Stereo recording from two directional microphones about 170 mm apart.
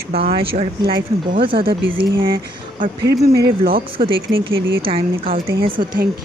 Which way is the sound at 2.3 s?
60° right (ahead or behind).